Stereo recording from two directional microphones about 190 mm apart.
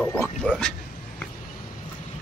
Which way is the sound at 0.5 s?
5° left (ahead or behind).